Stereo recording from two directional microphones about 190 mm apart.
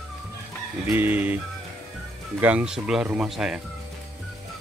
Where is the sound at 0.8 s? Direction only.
10° right (ahead or behind).